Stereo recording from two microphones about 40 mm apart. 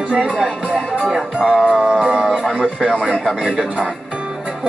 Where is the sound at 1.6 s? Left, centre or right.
Right.